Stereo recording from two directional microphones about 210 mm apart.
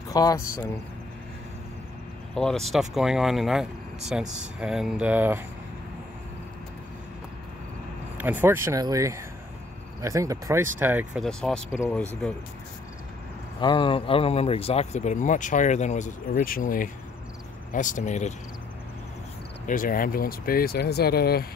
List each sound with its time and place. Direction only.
0.1 s speech: 15° left (ahead or behind)
2.3 s speech: centre (ahead or behind)
8.2 s speech: 10° right (ahead or behind)
11.2 s speech: centre (ahead or behind)
13.6 s speech: 25° left (ahead or behind)
19.6 s speech: 40° left (ahead or behind)